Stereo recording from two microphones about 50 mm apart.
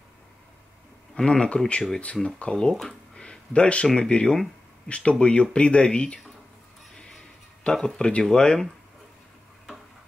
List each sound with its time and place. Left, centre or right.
1.1 s speech: centre
2.7 s speech: centre
3.2 s a sound: centre
4.1 s speech: centre
7.6 s speech: centre